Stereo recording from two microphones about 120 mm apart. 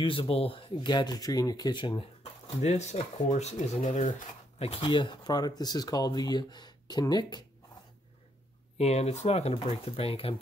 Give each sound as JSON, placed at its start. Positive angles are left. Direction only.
{"t": 0.0, "sound": "speech", "side_deg": 45}
{"t": 2.6, "sound": "speech", "side_deg": 70}
{"t": 4.6, "sound": "speech", "side_deg": 55}
{"t": 8.7, "sound": "speech", "side_deg": 65}